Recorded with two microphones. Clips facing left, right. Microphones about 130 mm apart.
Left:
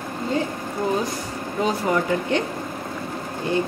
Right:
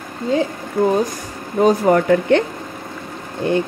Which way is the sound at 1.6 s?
55° right (ahead or behind).